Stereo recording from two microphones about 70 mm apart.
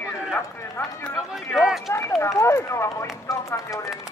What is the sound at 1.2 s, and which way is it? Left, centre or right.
Speech, centre.